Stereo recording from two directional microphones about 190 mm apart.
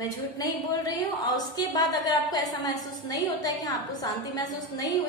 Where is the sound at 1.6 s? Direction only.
20° left (ahead or behind).